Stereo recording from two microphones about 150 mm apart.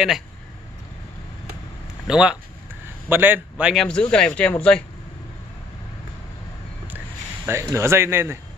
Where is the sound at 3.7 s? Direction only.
5° left (ahead or behind).